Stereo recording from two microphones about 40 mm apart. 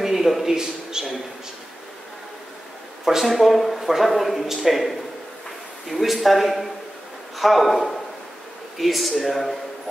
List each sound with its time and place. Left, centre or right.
0.0 s a sound: centre
1.0 s speech: centre
3.3 s speech: centre